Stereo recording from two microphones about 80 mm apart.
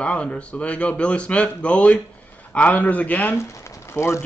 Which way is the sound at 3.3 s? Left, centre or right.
Left.